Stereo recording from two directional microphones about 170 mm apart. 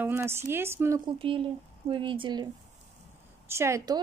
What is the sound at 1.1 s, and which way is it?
Speech, 30° right (ahead or behind).